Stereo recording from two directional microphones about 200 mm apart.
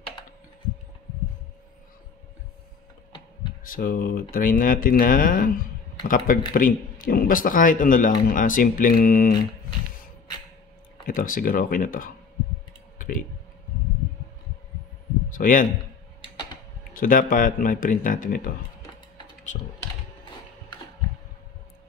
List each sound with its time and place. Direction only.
3.6 s a man's voice: 45° left (ahead or behind)
11.1 s a man's voice: 45° left (ahead or behind)
15.3 s a sound: 45° left (ahead or behind)
16.9 s a man's voice: 45° left (ahead or behind)